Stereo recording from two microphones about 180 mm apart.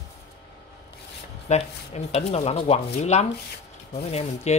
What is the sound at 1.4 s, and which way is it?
Speech, 35° left (ahead or behind).